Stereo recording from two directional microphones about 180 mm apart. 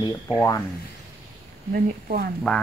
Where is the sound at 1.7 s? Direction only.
55° right (ahead or behind).